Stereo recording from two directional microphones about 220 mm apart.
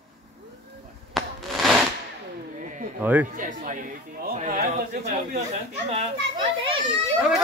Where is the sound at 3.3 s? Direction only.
35° right (ahead or behind).